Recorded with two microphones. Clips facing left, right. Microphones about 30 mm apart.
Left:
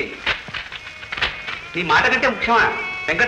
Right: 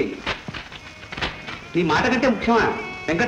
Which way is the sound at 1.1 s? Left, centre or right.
Left.